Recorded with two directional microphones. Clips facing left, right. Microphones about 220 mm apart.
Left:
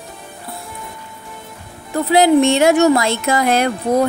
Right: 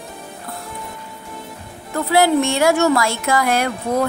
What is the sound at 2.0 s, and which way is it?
Speech, 20° left (ahead or behind).